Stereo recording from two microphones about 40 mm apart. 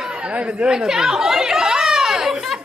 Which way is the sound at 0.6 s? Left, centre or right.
Centre.